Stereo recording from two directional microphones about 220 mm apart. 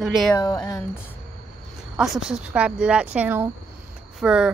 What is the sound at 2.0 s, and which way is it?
Speech, 5° right (ahead or behind).